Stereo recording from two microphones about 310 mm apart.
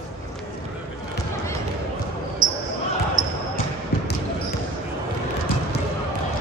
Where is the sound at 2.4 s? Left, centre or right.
Right.